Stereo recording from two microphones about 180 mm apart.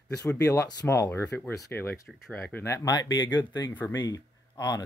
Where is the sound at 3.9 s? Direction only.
25° left (ahead or behind).